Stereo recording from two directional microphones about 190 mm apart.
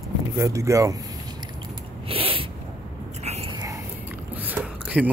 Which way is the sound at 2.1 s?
30° right (ahead or behind).